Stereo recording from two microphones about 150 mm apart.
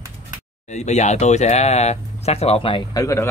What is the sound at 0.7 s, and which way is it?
Speech, 50° left (ahead or behind).